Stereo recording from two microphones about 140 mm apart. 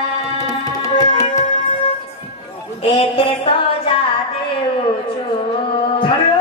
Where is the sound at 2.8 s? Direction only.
40° left (ahead or behind).